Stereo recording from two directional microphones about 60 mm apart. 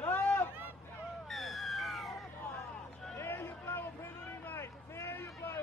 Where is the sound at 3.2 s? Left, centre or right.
Left.